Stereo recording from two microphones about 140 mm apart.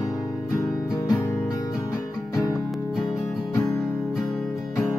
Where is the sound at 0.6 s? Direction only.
25° left (ahead or behind).